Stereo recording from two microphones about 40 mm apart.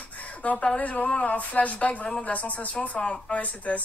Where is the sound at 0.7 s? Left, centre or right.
Left.